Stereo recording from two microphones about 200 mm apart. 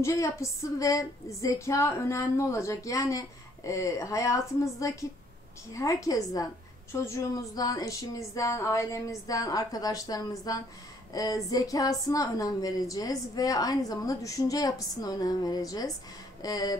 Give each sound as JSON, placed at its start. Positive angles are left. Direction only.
{"t": 0.0, "sound": "speech", "side_deg": 15}